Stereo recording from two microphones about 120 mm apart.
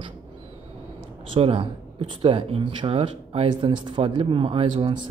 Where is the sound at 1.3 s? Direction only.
45° right (ahead or behind).